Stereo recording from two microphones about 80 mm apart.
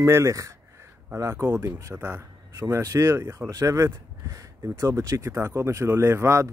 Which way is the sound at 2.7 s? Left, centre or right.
Right.